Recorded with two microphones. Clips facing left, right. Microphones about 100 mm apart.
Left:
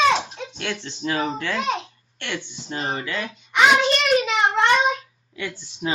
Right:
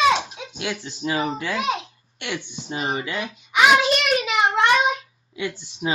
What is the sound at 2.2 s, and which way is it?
Speech, 15° right (ahead or behind).